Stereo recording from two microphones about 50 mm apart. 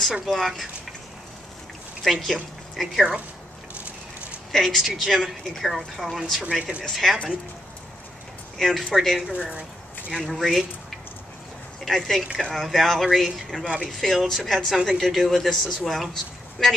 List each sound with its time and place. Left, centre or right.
0.1 s speech: centre
2.0 s speech: centre
4.5 s speech: centre
8.5 s speech: centre
9.3 s speech: right
10.1 s speech: centre
11.8 s speech: centre